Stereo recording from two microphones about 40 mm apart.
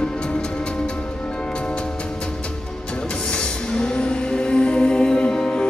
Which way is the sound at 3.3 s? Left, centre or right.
Left.